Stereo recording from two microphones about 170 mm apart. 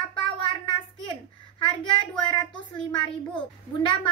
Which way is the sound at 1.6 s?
30° left (ahead or behind).